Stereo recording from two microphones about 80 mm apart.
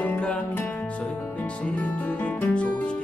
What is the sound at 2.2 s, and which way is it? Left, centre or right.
Music, centre.